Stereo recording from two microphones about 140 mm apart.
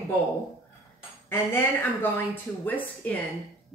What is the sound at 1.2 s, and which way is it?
A woman's voice, 15° left (ahead or behind).